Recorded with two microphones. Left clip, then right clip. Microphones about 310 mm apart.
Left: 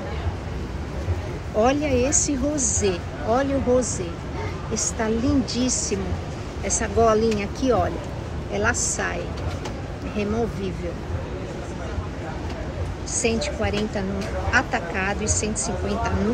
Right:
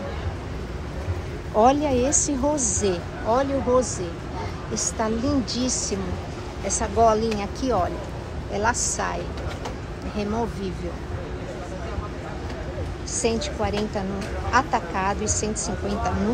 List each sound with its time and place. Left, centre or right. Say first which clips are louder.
1.6 s speech: right 2 dB; centre
2.5 s speech: even; right
2.8 s speech: left 1 dB; centre
4.9 s a woman's voice: left 1 dB; centre
5.7 s speech: left 1 dB; centre
6.8 s speech: even; centre
13.2 s speech: left 1 dB; centre